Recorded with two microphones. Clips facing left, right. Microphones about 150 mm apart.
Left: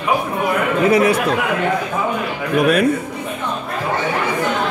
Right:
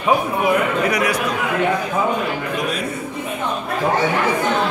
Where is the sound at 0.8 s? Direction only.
25° left (ahead or behind).